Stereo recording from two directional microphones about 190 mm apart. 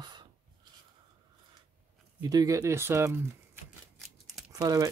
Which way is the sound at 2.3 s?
20° right (ahead or behind).